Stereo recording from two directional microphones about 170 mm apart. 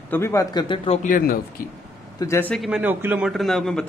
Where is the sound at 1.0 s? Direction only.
55° left (ahead or behind).